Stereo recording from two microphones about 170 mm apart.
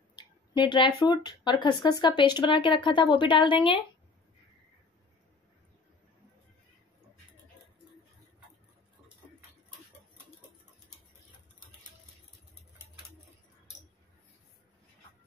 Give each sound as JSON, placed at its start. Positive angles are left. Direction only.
{"t": 0.1, "sound": "speech", "side_deg": 25}